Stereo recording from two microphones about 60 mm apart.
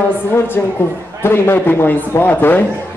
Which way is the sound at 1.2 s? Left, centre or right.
Left.